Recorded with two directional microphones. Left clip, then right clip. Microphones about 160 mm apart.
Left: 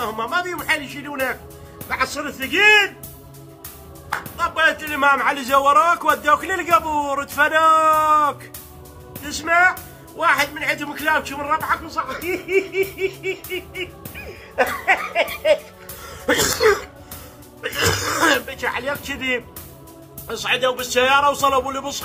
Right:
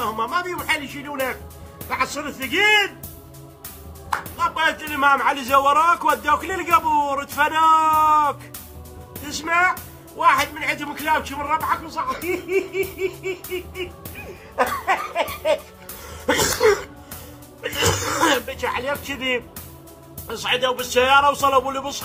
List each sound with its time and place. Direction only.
0.0 s speech: 20° left (ahead or behind)
4.4 s a man's voice: 20° left (ahead or behind)
15.1 s a man's voice: 15° left (ahead or behind)
16.1 s throat clearing: 20° left (ahead or behind)
17.6 s a sound: 15° left (ahead or behind)
20.2 s a man's voice: 15° left (ahead or behind)